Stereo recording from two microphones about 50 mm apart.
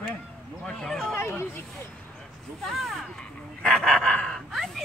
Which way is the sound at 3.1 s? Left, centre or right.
Centre.